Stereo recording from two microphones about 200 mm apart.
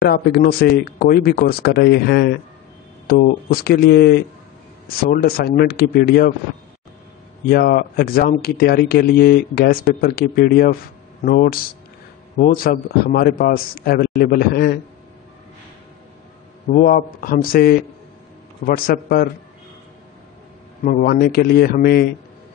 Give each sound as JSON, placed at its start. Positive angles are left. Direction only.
{"t": 0.0, "sound": "speech", "side_deg": 55}
{"t": 3.4, "sound": "speech", "side_deg": 50}
{"t": 7.4, "sound": "speech", "side_deg": 50}
{"t": 16.7, "sound": "speech", "side_deg": 45}
{"t": 20.8, "sound": "speech", "side_deg": 45}